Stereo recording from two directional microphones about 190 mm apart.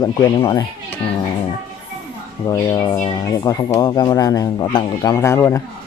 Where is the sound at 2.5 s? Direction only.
20° left (ahead or behind).